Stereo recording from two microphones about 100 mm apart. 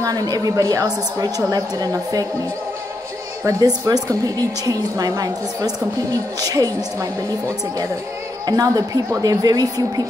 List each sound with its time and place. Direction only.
0.0 s a woman's voice: 40° right (ahead or behind)
3.4 s a woman's voice: 35° right (ahead or behind)